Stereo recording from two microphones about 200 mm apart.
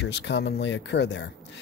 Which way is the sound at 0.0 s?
60° left (ahead or behind).